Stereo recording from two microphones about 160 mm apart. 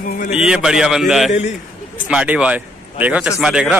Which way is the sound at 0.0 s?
55° left (ahead or behind).